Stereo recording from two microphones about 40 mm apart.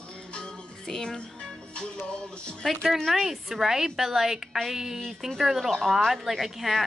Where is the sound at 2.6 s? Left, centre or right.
Centre.